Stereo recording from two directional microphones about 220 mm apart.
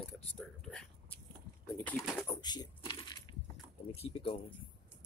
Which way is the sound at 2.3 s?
20° left (ahead or behind).